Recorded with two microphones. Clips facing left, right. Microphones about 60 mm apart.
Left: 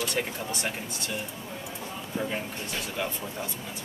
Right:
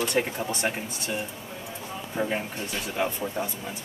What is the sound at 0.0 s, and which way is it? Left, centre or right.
Speech, right.